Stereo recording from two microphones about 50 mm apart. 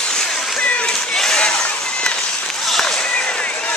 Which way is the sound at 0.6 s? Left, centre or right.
Left.